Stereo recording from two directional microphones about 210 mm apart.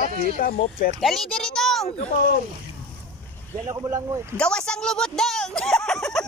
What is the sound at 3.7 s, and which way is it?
Speech, 15° right (ahead or behind).